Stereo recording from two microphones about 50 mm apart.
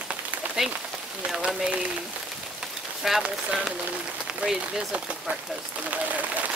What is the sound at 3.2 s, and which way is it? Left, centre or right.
Speech, centre.